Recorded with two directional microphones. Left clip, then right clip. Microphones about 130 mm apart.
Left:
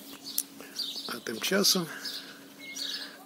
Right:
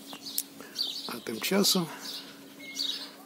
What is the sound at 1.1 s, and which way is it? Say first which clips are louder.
Speech: left 1 dB; 15° right (ahead or behind).